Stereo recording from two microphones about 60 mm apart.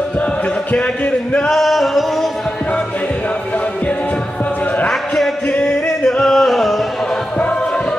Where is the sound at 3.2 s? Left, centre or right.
Left.